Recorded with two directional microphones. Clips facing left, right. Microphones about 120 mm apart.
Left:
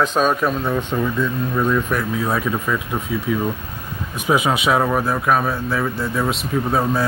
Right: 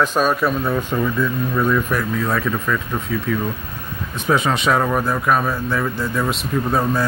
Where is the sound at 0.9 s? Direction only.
10° left (ahead or behind).